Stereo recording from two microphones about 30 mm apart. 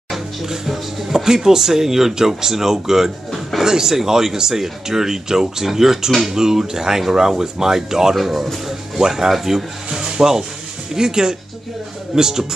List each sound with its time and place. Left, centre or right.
0.5 s speech: centre
9.3 s speech: centre